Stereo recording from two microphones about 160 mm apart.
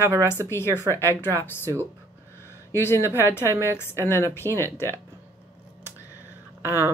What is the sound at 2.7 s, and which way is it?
Speech, 15° left (ahead or behind).